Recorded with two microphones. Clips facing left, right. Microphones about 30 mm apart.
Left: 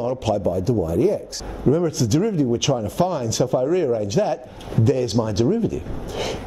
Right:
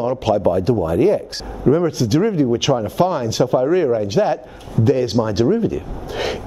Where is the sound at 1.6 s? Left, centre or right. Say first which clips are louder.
Right 3 dB; right.